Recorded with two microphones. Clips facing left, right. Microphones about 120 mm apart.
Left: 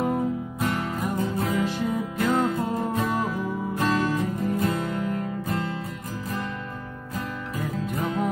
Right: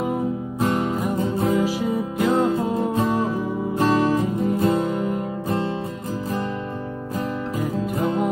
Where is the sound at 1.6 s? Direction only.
5° right (ahead or behind).